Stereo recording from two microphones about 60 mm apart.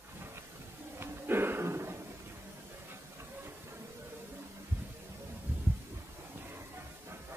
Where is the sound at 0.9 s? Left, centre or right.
Right.